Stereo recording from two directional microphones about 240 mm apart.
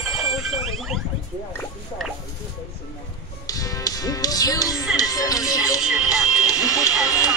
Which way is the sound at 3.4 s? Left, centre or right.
Centre.